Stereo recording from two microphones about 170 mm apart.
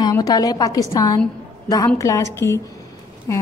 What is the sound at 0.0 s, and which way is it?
Speech, 20° left (ahead or behind).